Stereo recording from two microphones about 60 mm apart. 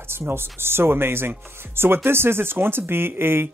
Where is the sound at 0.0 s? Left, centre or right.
Right.